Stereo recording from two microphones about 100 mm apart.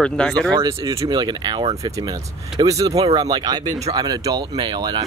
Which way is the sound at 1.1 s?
45° right (ahead or behind).